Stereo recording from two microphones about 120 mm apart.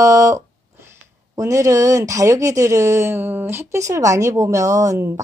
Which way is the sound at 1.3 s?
30° right (ahead or behind).